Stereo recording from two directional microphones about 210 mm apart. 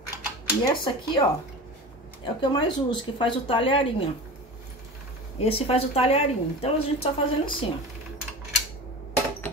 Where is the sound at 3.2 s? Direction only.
25° left (ahead or behind).